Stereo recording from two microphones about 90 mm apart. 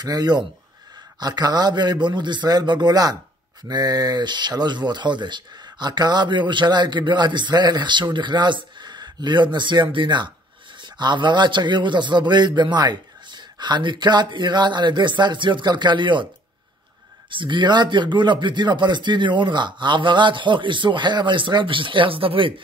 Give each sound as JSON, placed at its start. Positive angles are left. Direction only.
{"t": 0.0, "sound": "a man's voice", "side_deg": -45}
{"t": 17.3, "sound": "speech", "side_deg": -60}